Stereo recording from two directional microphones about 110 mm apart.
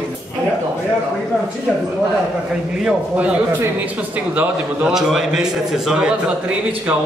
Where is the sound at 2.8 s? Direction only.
10° right (ahead or behind).